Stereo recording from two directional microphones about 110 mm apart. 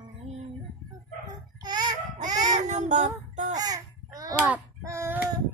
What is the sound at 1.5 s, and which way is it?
Child singing, 40° right (ahead or behind).